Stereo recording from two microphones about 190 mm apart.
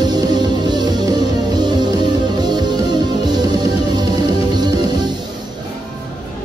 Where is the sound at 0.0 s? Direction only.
20° right (ahead or behind).